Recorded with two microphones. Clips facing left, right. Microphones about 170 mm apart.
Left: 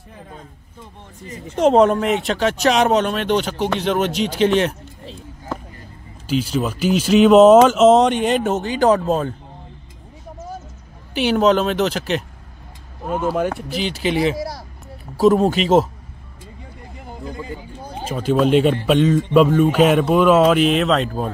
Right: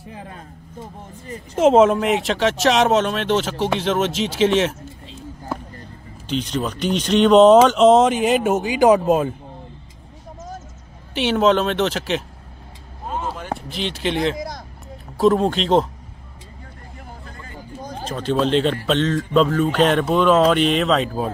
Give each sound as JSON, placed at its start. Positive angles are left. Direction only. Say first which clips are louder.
{"t": 0.1, "sound": "speech", "louder": "right 2 dB", "side_deg": -75}
{"t": 1.5, "sound": "speech", "louder": "even", "side_deg": 0}
{"t": 5.5, "sound": "a sound", "louder": "even", "side_deg": -10}
{"t": 6.2, "sound": "speech", "louder": "left 3 dB", "side_deg": 5}
{"t": 11.1, "sound": "speech", "louder": "left 1 dB", "side_deg": 0}
{"t": 13.1, "sound": "speech", "louder": "left 7 dB", "side_deg": 60}
{"t": 13.7, "sound": "speech", "louder": "left 3 dB", "side_deg": 0}
{"t": 17.8, "sound": "speech", "louder": "left 3 dB", "side_deg": 10}